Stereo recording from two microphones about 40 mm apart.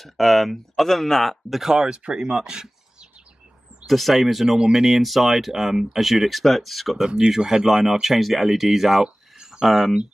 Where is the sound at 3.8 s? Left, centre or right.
Centre.